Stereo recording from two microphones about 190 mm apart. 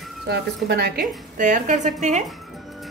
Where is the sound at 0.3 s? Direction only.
60° right (ahead or behind); by 2.2 s 40° right (ahead or behind).